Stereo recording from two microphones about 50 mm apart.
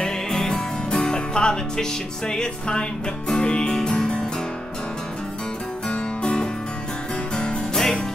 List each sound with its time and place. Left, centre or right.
0.0 s music: centre
5.9 s music: centre